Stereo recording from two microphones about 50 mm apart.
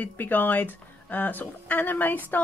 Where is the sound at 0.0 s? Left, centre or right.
Left.